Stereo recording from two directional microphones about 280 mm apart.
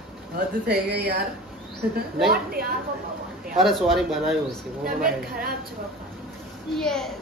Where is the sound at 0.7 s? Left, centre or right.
Right.